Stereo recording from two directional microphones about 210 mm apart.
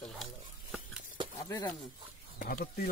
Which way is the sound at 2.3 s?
40° left (ahead or behind).